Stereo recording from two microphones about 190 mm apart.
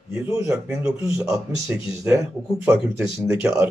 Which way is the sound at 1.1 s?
15° right (ahead or behind).